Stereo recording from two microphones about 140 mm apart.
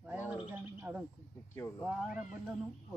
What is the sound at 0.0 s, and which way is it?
Bird, 10° right (ahead or behind).